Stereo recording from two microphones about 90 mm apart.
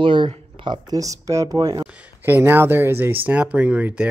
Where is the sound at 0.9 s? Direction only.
40° right (ahead or behind).